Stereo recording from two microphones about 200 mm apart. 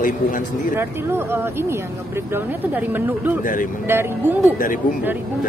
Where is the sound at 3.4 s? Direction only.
45° left (ahead or behind).